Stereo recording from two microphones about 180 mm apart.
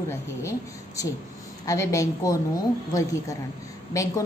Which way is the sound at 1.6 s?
15° left (ahead or behind).